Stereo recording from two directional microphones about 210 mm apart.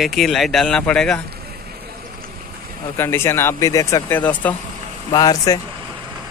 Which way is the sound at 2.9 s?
10° left (ahead or behind).